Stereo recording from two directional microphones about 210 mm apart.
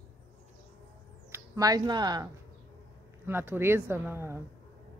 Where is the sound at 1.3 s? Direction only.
15° right (ahead or behind).